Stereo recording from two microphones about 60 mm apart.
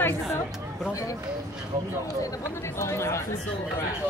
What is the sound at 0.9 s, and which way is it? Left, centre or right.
Speech, left.